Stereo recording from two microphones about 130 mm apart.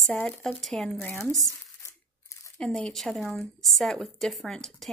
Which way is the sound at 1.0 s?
15° left (ahead or behind).